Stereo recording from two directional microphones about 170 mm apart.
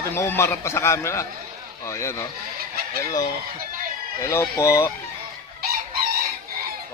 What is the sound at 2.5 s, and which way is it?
Chicken, 60° right (ahead or behind).